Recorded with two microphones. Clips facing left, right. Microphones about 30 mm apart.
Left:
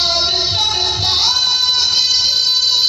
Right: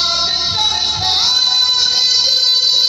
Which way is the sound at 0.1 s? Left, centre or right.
Centre.